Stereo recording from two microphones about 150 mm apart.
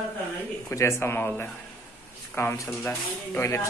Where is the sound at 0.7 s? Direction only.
15° left (ahead or behind).